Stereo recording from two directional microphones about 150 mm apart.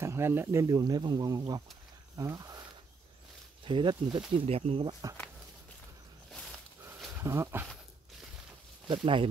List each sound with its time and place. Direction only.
0.0 s speech: 15° right (ahead or behind)
2.1 s a sound: 20° right (ahead or behind)
3.6 s speech: 30° right (ahead or behind)
4.5 s speech: 40° right (ahead or behind)
7.1 s speech: 20° right (ahead or behind)
8.8 s speech: 35° right (ahead or behind)